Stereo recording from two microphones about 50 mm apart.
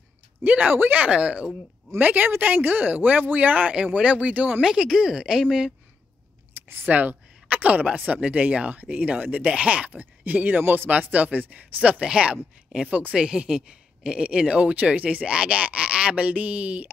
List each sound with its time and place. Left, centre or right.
0.5 s speech: right
2.0 s speech: right
4.5 s a woman's voice: centre
6.7 s a woman's voice: right
9.8 s speech: right
11.8 s a woman's voice: right